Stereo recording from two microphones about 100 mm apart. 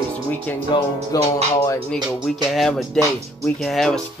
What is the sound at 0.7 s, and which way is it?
Speech, 50° left (ahead or behind).